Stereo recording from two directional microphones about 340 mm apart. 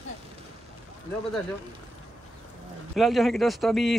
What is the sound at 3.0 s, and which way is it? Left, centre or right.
Speech, centre.